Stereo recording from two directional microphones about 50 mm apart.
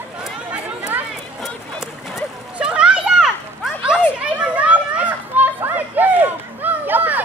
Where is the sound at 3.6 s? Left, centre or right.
Centre.